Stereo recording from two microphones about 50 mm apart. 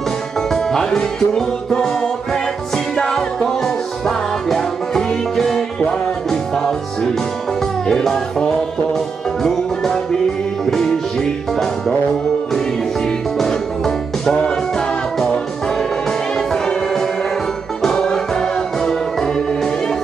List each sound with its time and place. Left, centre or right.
0.5 s music: centre
10.6 s music: centre
14.3 s music: centre
16.3 s music: centre